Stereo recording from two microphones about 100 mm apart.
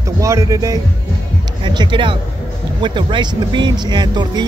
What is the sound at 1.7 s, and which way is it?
Speech, 50° right (ahead or behind).